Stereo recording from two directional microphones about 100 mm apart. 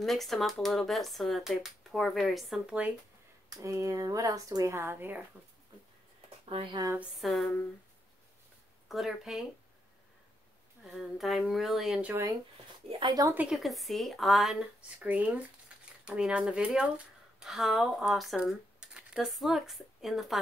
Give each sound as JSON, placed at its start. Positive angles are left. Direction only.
{"t": 0.0, "sound": "speech", "side_deg": 0}
{"t": 3.4, "sound": "speech", "side_deg": -30}
{"t": 6.5, "sound": "speech", "side_deg": -60}
{"t": 7.2, "sound": "speech", "side_deg": 0}
{"t": 8.8, "sound": "a woman's voice", "side_deg": 0}
{"t": 10.8, "sound": "speech", "side_deg": 0}
{"t": 12.0, "sound": "speech", "side_deg": -20}
{"t": 13.0, "sound": "speech", "side_deg": -40}
{"t": 13.5, "sound": "speech", "side_deg": 0}
{"t": 15.0, "sound": "speech", "side_deg": -15}